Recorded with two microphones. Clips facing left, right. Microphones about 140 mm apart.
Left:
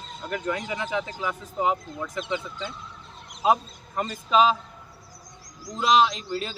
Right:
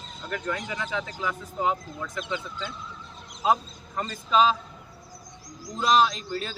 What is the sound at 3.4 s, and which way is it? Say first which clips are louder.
Speech: left 2 dB; 10° left (ahead or behind).